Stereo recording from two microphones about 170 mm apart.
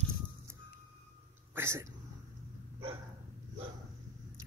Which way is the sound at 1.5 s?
15° right (ahead or behind).